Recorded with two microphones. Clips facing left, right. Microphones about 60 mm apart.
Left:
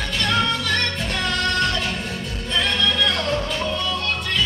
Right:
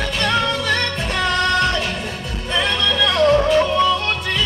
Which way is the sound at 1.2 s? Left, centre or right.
Right.